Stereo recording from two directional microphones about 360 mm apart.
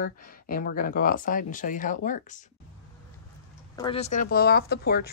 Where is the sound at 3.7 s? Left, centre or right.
Centre.